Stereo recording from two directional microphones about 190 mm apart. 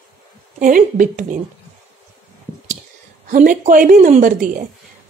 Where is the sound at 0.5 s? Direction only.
45° right (ahead or behind).